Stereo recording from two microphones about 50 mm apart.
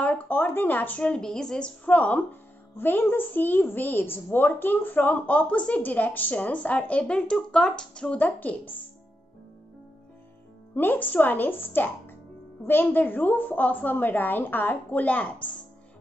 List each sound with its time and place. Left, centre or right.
0.0 s a woman's voice: left
1.0 s a woman's voice: centre
1.9 s speech: left
2.8 s a woman's voice: left
8.2 s a woman's voice: left
10.7 s a woman's voice: left